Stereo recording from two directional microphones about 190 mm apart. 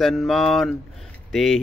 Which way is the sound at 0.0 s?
Centre (ahead or behind).